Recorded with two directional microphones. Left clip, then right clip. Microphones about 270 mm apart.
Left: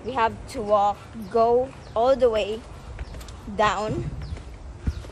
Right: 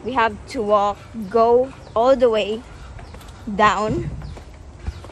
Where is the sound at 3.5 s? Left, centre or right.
Right.